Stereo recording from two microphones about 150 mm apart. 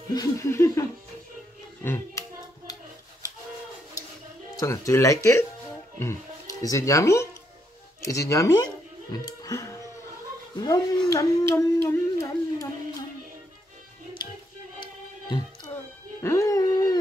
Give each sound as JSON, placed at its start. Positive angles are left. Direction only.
{"t": 0.1, "sound": "speech", "side_deg": 25}
{"t": 1.8, "sound": "hands", "side_deg": 20}
{"t": 4.6, "sound": "speech", "side_deg": 20}
{"t": 9.1, "sound": "music", "side_deg": 25}
{"t": 10.6, "sound": "speech", "side_deg": 25}
{"t": 15.2, "sound": "music", "side_deg": 30}